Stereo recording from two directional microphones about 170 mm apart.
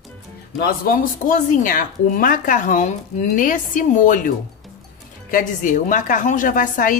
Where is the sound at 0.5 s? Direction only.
60° left (ahead or behind).